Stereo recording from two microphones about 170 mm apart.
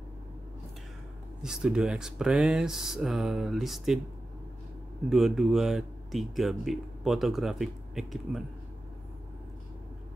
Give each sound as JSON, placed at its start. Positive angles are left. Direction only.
{"t": 1.4, "sound": "speech", "side_deg": -5}
{"t": 5.1, "sound": "speech", "side_deg": 0}